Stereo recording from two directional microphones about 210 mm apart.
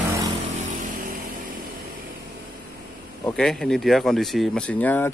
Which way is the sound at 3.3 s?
5° left (ahead or behind).